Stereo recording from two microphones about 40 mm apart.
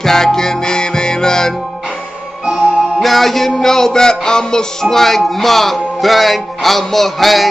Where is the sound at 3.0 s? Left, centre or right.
Centre.